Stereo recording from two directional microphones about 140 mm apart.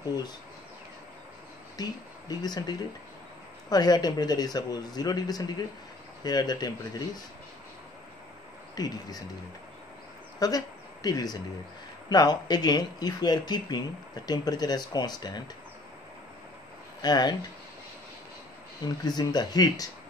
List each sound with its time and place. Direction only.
1.8 s speech: 30° left (ahead or behind)
3.7 s speech: 30° left (ahead or behind)
8.7 s speech: 25° left (ahead or behind)
10.4 s speech: 25° left (ahead or behind)
17.0 s speech: 30° left (ahead or behind)
19.0 s speech: 30° left (ahead or behind)